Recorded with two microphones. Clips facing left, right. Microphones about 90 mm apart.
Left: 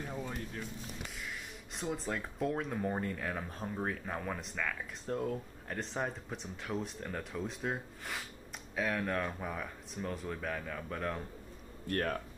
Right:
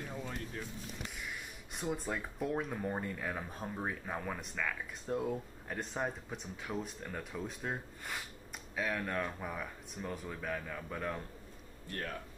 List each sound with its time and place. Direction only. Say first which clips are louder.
0.0 s a sound: left 2 dB; 10° left (ahead or behind)
1.8 s speech: even; 5° right (ahead or behind)
11.9 s speech: left 7 dB; 55° left (ahead or behind)